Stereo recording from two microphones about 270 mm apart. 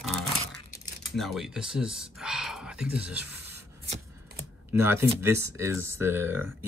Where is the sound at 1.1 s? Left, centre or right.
Centre.